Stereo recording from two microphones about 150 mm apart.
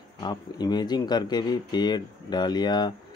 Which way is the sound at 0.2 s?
30° left (ahead or behind).